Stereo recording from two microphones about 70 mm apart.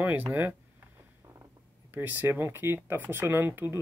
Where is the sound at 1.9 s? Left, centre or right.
Right.